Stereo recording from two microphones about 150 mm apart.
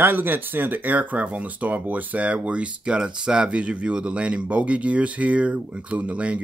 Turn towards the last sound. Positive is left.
turn(degrees=-10)  # may be behind; listen again after turning